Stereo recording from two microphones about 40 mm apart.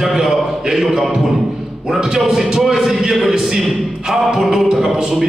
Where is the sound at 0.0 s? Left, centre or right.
Centre.